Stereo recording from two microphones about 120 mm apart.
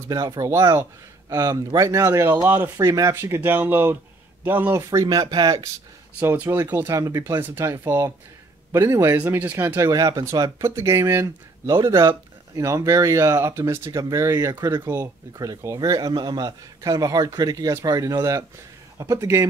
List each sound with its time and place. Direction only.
0.1 s speech: 30° right (ahead or behind)
4.7 s a man's voice: 30° right (ahead or behind)
6.1 s speech: 15° right (ahead or behind)
6.9 s speech: 25° right (ahead or behind)
9.8 s speech: 30° right (ahead or behind)
15.3 s a man's voice: 30° right (ahead or behind)